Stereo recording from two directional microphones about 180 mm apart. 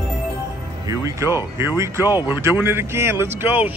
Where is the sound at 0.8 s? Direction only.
15° right (ahead or behind).